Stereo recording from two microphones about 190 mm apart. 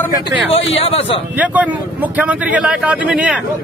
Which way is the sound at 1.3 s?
10° right (ahead or behind).